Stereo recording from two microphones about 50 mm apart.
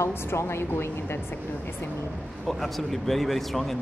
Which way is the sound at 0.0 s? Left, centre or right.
Left.